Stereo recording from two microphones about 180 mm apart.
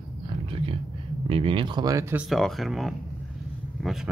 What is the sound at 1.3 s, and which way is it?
Speech, 30° right (ahead or behind).